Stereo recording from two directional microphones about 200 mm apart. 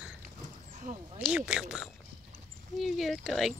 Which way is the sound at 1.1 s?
5° right (ahead or behind).